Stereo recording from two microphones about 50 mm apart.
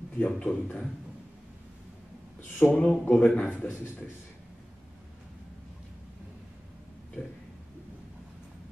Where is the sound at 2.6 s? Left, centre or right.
Left.